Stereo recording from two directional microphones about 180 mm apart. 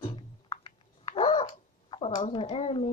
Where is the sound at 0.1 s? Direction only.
30° left (ahead or behind).